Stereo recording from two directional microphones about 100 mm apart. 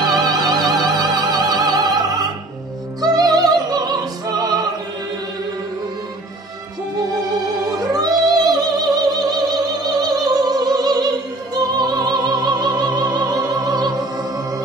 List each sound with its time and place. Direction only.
0.0 s music: 40° right (ahead or behind)
7.6 s music: 40° right (ahead or behind)